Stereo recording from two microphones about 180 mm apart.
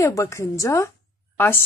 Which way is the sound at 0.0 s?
15° left (ahead or behind).